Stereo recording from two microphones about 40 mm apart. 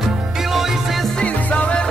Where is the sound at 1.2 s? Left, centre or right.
Left.